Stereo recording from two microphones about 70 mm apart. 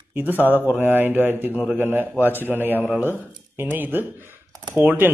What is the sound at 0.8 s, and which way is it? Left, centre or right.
A man's voice, right.